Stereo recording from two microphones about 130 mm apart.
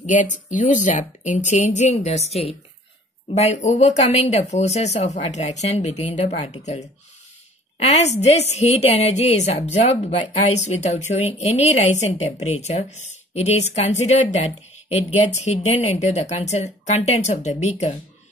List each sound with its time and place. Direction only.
0.0 s a woman's voice: 70° left (ahead or behind)